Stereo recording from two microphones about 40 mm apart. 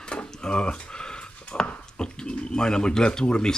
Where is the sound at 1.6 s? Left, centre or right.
Left.